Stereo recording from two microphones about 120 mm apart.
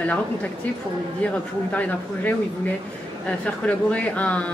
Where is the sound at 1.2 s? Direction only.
10° left (ahead or behind).